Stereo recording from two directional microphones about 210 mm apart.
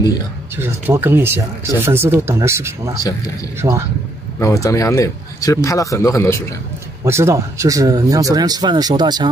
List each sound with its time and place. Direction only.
0.6 s speech: 10° right (ahead or behind)
4.4 s speech: 15° left (ahead or behind)
7.1 s speech: 10° right (ahead or behind)